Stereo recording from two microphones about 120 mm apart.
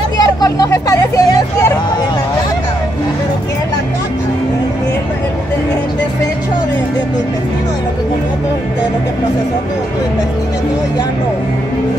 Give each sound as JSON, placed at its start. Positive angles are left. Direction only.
{"t": 0.2, "sound": "vehicle", "side_deg": 30}